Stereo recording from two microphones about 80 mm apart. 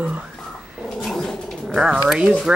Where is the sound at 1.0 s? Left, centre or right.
Centre.